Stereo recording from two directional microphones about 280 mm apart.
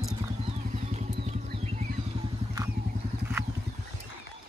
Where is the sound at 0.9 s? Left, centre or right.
Right.